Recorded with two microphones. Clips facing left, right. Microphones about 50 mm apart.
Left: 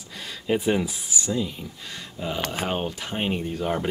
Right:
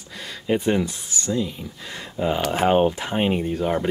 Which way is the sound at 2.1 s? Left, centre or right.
Right.